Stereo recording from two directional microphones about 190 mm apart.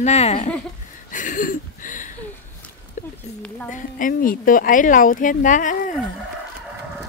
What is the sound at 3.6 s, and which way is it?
A woman's voice, 45° left (ahead or behind).